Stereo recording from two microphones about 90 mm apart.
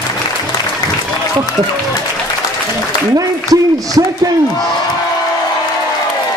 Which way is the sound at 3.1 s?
45° right (ahead or behind).